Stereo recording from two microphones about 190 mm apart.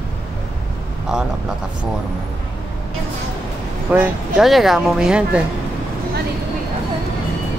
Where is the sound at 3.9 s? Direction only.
5° right (ahead or behind).